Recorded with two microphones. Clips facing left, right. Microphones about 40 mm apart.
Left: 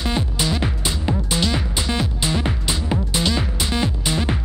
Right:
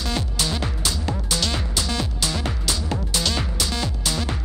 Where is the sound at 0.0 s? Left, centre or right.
Centre.